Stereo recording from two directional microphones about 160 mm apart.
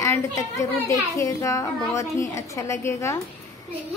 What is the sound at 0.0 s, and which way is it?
A child's voice, 20° left (ahead or behind).